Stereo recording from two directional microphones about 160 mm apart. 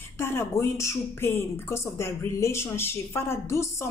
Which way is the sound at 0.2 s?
15° left (ahead or behind).